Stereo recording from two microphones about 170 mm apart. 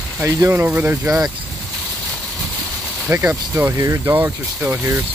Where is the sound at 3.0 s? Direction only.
10° right (ahead or behind).